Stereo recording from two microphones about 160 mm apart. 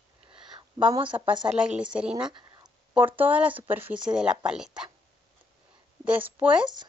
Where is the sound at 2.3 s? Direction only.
25° right (ahead or behind).